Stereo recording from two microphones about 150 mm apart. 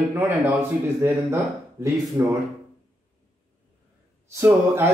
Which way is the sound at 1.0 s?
20° right (ahead or behind).